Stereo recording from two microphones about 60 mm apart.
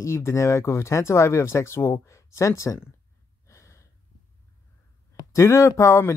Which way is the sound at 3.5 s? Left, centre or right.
Left.